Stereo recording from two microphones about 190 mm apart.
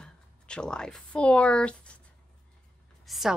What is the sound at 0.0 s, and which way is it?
Speech, 5° left (ahead or behind).